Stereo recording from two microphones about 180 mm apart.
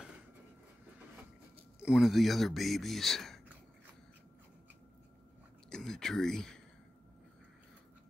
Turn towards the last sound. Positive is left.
turn(degrees=5)  # may be behind; listen again after turning